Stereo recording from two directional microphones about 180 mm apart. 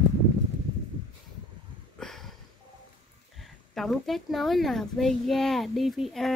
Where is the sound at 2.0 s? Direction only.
Centre (ahead or behind).